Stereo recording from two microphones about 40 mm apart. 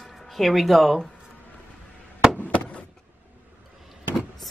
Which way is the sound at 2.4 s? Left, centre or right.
Left.